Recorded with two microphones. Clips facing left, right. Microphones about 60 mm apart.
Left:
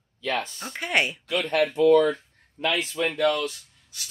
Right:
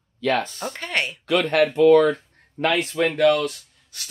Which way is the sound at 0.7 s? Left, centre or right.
Centre.